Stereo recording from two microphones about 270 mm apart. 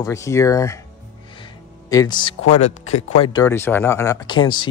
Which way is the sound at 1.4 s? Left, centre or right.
Centre.